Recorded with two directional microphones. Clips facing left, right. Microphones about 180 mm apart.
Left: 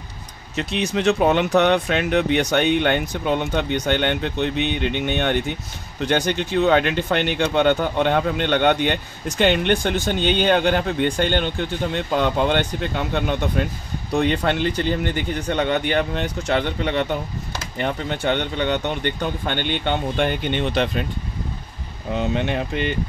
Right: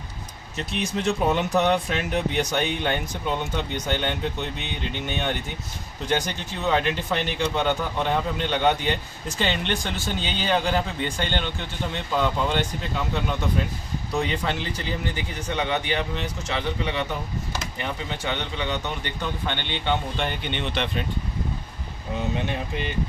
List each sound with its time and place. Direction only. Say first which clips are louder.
0.6 s speech: left 5 dB; 80° left; by 21.0 s 40° left (ahead or behind)
22.3 s speech: left 5 dB; 70° left (ahead or behind)